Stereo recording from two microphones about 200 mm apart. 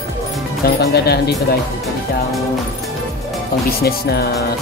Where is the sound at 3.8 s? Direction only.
50° left (ahead or behind).